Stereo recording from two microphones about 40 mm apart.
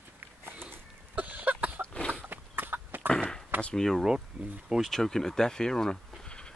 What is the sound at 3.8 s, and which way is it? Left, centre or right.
Speech, centre.